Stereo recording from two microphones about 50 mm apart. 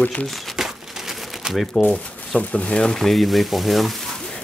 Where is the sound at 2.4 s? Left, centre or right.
Left.